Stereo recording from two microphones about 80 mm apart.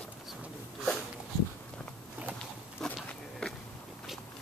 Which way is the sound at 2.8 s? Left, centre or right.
Centre.